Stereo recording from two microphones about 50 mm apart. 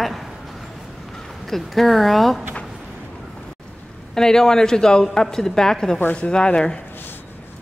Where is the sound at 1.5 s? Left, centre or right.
Centre.